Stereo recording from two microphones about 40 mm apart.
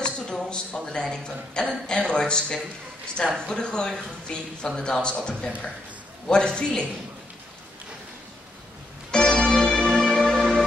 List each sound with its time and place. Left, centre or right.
0.0 s a sound: centre
0.9 s a man's voice: left
9.1 s music: left